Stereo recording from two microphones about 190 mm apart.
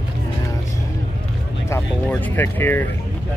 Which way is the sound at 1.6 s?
10° left (ahead or behind).